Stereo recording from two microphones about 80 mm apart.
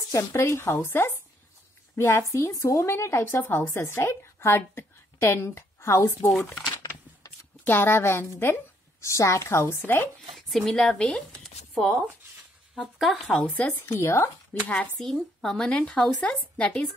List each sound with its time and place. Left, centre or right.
0.1 s speech: left
6.9 s a sound: left
9.0 s speech: left
10.3 s speech: centre
11.4 s a sound: centre
12.7 s speech: centre
13.4 s speech: centre
14.7 s speech: centre